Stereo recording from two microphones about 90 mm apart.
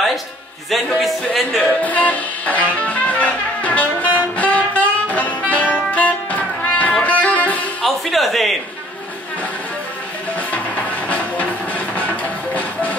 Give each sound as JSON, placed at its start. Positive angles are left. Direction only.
{"t": 0.7, "sound": "speech", "side_deg": 5}
{"t": 1.8, "sound": "music", "side_deg": 15}
{"t": 4.4, "sound": "saxophone", "side_deg": 15}
{"t": 7.8, "sound": "music", "side_deg": 0}
{"t": 11.1, "sound": "music", "side_deg": 15}